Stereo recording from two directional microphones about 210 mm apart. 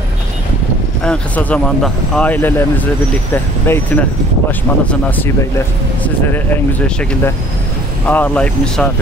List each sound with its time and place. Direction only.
1.0 s speech: 5° left (ahead or behind)